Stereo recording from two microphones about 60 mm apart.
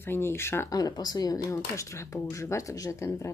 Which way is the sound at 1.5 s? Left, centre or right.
Left.